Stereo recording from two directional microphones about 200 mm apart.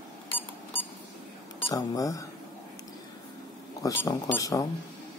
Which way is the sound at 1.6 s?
15° left (ahead or behind).